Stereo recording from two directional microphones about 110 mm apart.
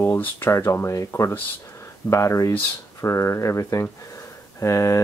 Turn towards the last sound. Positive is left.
turn(degrees=25)  # may be behind; listen again after turning